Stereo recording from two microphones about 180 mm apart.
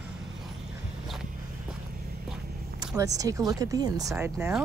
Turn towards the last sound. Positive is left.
turn(degrees=-10)  # may be behind; listen again after turning